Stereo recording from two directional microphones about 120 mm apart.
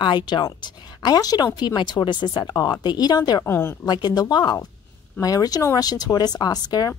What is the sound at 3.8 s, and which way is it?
Speech, 35° left (ahead or behind).